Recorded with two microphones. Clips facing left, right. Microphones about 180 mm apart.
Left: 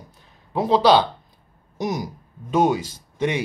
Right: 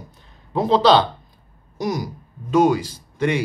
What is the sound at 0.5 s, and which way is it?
Speech, 10° left (ahead or behind).